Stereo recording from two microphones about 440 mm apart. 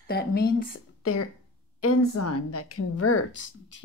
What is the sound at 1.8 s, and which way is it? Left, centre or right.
A woman's voice, left.